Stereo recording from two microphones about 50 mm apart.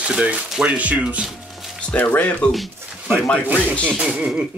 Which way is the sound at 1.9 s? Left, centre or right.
Left.